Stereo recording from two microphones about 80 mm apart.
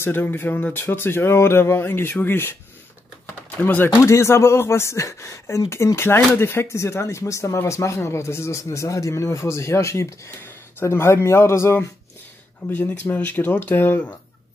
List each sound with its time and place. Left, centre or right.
0.0 s speech: left
3.6 s speech: left
12.7 s speech: left